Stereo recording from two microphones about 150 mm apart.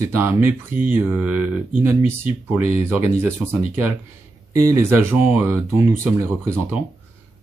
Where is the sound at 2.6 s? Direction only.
45° left (ahead or behind).